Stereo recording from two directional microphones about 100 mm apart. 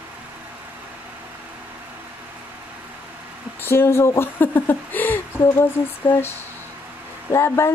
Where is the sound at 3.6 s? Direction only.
25° left (ahead or behind).